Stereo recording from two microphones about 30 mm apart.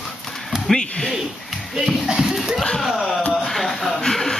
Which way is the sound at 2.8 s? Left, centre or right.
Centre.